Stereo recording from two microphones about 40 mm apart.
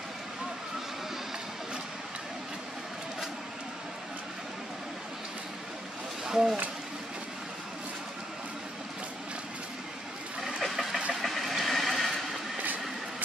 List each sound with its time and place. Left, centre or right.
6.2 s a sound: centre
10.4 s vehicle: centre
11.1 s train: centre